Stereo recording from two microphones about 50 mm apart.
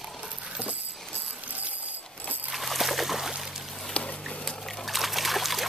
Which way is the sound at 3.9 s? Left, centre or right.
Left.